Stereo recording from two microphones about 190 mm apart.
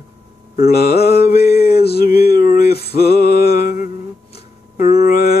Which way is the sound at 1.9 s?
55° left (ahead or behind).